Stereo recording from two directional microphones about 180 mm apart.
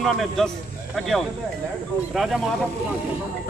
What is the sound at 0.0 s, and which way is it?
A man's voice, centre (ahead or behind).